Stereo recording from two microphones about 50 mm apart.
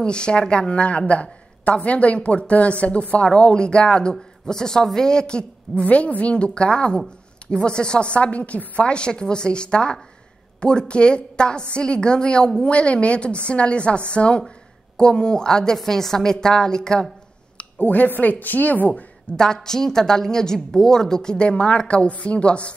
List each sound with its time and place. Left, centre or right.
0.0 s a woman's voice: centre
17.7 s a woman's voice: left
19.3 s a woman's voice: centre